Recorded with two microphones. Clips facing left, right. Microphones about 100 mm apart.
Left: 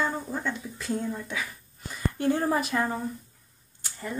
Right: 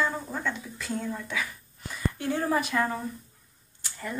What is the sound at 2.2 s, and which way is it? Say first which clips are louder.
Speech: left 3 dB; 35° left (ahead or behind).